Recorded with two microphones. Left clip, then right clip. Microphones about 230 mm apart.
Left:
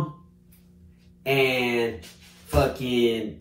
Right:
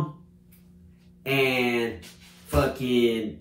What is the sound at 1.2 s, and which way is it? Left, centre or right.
Speech, centre.